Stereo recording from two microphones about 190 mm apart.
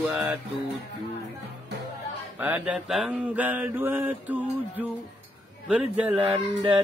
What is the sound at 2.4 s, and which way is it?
Mantra, 5° right (ahead or behind).